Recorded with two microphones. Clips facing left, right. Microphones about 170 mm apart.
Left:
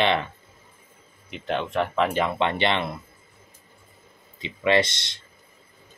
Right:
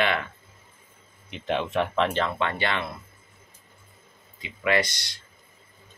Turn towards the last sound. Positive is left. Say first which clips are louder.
# left 4 dB
turn(degrees=25)  # may be behind; listen again after turning